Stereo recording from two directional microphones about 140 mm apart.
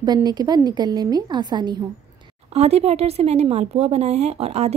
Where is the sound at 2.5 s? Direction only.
50° right (ahead or behind).